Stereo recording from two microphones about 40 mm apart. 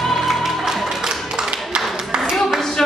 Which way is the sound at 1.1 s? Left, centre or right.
Centre.